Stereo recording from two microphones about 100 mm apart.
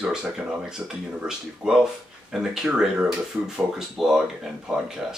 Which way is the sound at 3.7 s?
5° right (ahead or behind).